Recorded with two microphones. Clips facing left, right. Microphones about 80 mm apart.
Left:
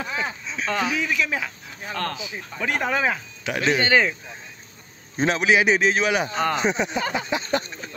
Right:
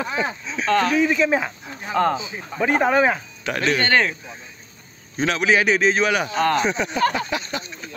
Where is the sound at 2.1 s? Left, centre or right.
Right.